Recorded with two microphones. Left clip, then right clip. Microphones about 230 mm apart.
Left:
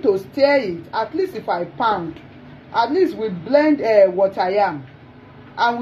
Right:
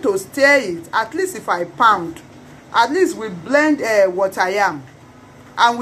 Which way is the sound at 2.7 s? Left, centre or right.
Centre.